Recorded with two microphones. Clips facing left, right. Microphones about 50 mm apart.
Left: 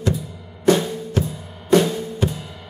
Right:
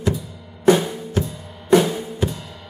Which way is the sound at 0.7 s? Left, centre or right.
Centre.